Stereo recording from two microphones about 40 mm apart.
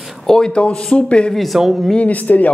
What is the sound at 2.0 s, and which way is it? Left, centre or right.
Speech, left.